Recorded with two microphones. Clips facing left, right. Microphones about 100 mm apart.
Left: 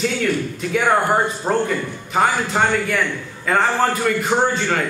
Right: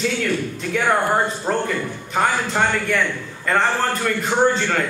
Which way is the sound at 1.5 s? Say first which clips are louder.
Left 2 dB; 15° left (ahead or behind).